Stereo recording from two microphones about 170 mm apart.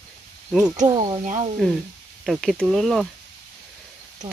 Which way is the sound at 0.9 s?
30° right (ahead or behind).